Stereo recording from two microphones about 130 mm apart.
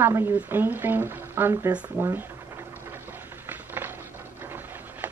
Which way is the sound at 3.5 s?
15° right (ahead or behind).